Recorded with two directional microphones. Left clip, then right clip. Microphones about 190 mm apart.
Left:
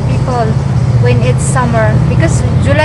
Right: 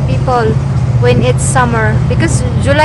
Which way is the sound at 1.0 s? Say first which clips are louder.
Right 3 dB; 20° right (ahead or behind).